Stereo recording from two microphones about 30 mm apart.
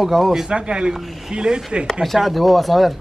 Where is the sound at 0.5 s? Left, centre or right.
Right.